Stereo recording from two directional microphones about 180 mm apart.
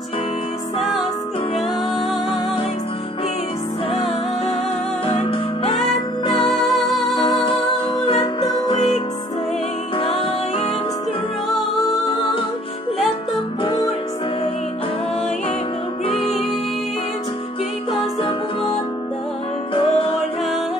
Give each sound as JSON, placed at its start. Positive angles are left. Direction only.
{"t": 5.0, "sound": "music", "side_deg": 30}
{"t": 6.7, "sound": "music", "side_deg": 0}
{"t": 7.3, "sound": "music", "side_deg": 30}
{"t": 13.6, "sound": "music", "side_deg": 30}
{"t": 16.1, "sound": "music", "side_deg": 35}
{"t": 19.7, "sound": "music", "side_deg": 30}